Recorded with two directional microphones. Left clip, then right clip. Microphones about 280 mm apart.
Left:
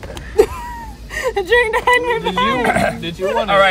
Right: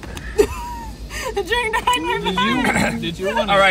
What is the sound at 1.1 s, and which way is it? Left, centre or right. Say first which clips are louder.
Speech: left 6 dB; left.